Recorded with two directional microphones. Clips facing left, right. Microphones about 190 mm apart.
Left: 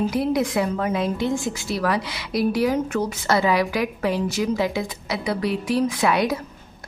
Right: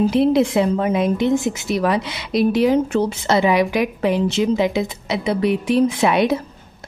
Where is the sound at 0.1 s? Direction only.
25° right (ahead or behind).